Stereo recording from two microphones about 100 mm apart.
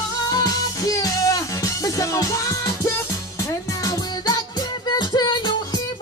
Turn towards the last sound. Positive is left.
turn(degrees=45)  # may be behind; listen again after turning